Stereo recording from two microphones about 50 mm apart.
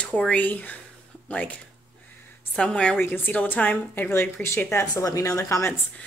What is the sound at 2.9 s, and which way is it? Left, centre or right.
Speech, left.